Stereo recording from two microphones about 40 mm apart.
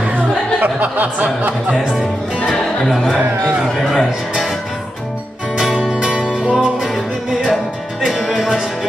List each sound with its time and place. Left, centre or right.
0.1 s music: right
3.9 s speech: centre
5.8 s music: right